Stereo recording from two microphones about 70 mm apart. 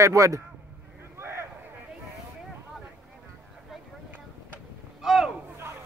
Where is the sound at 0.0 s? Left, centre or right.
Right.